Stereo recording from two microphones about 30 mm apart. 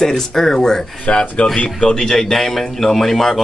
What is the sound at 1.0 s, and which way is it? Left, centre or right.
Speech, left.